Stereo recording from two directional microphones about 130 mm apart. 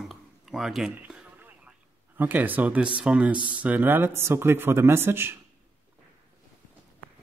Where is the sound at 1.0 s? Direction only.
10° right (ahead or behind).